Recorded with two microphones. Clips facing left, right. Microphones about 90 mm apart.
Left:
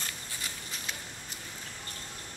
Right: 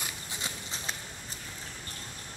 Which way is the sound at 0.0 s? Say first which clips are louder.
Right 2 dB; 20° right (ahead or behind).